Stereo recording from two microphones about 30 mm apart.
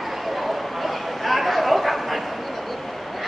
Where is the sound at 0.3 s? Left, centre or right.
Centre.